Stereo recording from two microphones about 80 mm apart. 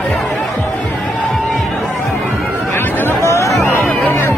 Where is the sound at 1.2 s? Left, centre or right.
Centre.